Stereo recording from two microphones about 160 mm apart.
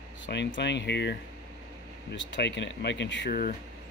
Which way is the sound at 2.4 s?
90° left.